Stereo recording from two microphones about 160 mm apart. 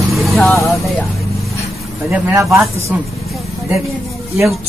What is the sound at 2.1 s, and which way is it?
Speech, 15° right (ahead or behind).